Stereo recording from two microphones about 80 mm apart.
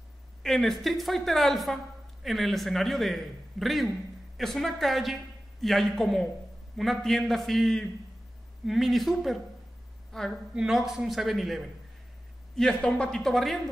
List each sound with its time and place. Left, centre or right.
0.4 s a man's voice: centre
10.5 s a man's voice: centre